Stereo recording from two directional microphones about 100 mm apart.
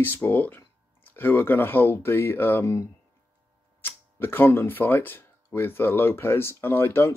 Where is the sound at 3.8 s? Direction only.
20° left (ahead or behind).